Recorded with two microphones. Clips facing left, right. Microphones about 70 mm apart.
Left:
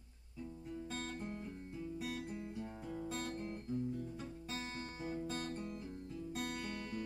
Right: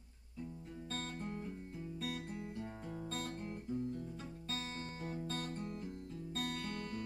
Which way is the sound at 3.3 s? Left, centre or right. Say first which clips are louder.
Left 1 dB; centre.